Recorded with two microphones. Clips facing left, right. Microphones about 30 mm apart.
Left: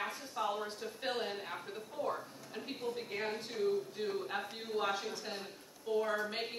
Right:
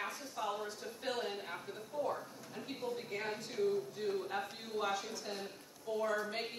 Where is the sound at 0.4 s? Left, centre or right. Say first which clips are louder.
Left 3 dB; centre.